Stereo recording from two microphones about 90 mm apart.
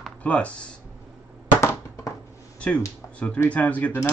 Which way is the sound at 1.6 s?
30° left (ahead or behind).